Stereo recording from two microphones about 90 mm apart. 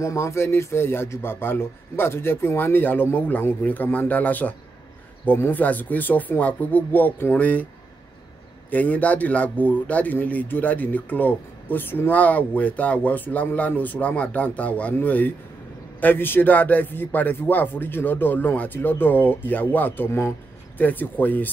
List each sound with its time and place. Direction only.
0.0 s a man's voice: 35° left (ahead or behind); by 7.6 s 15° left (ahead or behind)
8.6 s a man's voice: 20° left (ahead or behind)
20.8 s a man's voice: 20° left (ahead or behind)